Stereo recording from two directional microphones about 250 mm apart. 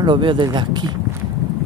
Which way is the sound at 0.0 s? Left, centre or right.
Centre.